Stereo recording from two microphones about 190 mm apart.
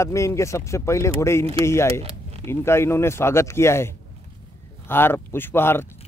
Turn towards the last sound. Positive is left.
turn(degrees=10)  # may be behind; listen again after turning